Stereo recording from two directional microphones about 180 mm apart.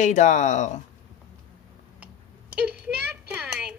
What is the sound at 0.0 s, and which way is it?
Speech, 45° left (ahead or behind).